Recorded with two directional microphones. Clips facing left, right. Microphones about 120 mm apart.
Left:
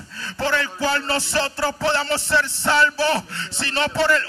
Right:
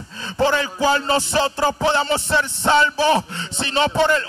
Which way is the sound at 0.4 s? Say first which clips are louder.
Right 4 dB; 20° right (ahead or behind).